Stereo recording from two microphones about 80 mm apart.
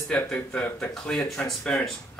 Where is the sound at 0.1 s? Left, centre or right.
Centre.